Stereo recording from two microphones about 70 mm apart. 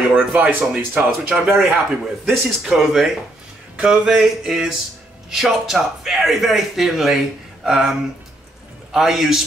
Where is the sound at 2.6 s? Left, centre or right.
Centre.